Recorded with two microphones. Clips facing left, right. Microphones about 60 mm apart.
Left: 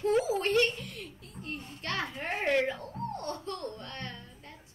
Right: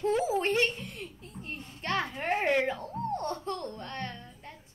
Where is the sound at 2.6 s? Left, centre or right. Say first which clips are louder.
Right 2 dB; right.